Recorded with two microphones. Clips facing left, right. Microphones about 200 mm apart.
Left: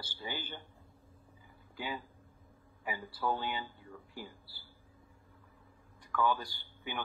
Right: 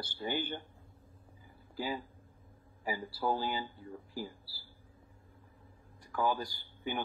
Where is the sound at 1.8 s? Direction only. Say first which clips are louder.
Right 4 dB; 35° right (ahead or behind).